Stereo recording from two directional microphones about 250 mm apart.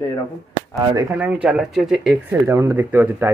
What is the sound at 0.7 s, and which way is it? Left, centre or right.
Speech, centre.